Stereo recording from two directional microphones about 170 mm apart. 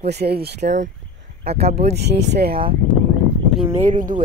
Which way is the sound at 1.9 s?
85° right.